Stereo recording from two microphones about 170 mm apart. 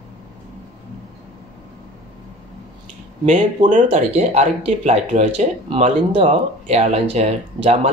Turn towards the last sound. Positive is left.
turn(degrees=-35)  # may be behind; listen again after turning